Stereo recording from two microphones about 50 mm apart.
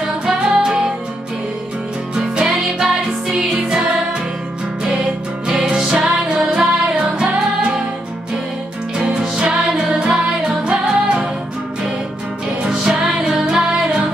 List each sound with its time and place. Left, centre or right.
0.3 s music: centre
2.1 s music: centre
5.5 s music: centre
9.2 s music: centre
12.6 s music: centre